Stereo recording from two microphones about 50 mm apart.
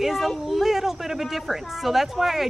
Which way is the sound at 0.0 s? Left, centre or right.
Centre.